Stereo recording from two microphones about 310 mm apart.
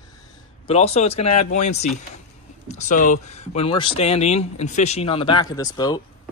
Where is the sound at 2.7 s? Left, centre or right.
Left.